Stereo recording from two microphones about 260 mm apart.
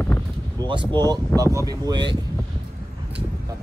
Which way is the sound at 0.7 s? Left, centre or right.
Centre.